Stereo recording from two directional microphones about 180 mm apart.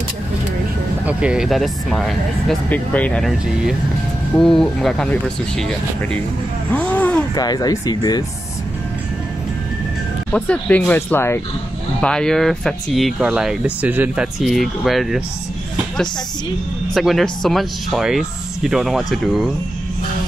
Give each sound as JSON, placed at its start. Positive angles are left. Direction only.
{"t": 1.0, "sound": "speech", "side_deg": -5}
{"t": 6.7, "sound": "a sound", "side_deg": 10}
{"t": 7.3, "sound": "speech", "side_deg": 20}
{"t": 10.3, "sound": "speech", "side_deg": 5}
{"t": 16.9, "sound": "speech", "side_deg": 0}